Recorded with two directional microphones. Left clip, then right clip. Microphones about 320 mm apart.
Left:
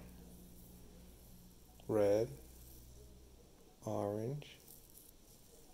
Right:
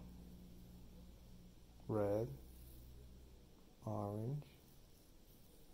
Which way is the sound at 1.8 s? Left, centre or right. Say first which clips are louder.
Left 7 dB; centre.